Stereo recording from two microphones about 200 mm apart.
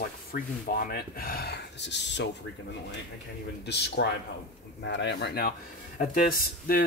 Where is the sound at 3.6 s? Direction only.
55° left (ahead or behind).